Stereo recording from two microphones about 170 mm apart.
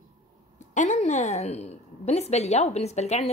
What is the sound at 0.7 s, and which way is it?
A woman's voice, 45° left (ahead or behind).